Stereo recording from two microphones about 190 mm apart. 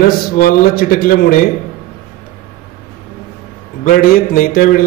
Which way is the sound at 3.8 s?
45° left (ahead or behind).